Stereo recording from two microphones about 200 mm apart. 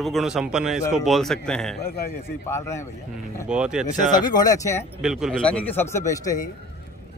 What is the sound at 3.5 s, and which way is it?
Speech, 5° right (ahead or behind).